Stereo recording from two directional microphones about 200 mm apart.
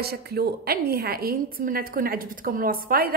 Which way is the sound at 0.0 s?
50° right (ahead or behind).